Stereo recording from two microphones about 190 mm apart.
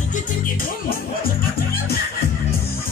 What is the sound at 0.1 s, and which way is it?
Music, 50° left (ahead or behind).